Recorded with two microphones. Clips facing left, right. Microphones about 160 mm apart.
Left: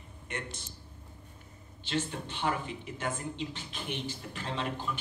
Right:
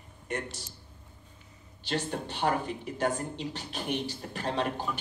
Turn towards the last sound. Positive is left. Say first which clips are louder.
# right 4 dB
turn(degrees=-40)  # may be behind; listen again after turning